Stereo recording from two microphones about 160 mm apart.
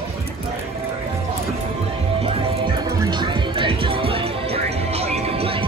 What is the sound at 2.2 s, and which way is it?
Music, 35° right (ahead or behind).